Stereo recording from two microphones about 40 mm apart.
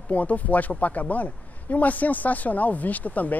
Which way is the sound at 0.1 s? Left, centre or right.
Left.